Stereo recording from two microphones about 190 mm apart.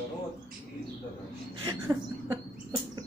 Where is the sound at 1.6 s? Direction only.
15° right (ahead or behind).